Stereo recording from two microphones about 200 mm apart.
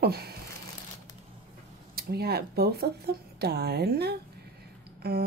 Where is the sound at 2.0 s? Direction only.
50° right (ahead or behind).